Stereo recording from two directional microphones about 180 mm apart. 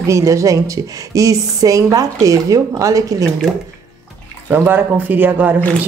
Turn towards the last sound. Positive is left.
turn(degrees=-10)  # may be behind; listen again after turning